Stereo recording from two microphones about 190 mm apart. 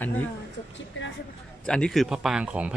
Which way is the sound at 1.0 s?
75° left (ahead or behind).